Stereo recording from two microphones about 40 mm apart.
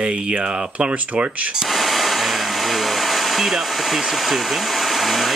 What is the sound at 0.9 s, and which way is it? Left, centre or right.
Speech, right.